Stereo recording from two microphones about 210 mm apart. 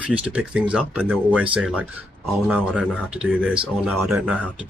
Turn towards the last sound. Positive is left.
turn(degrees=0)  # may be behind; listen again after turning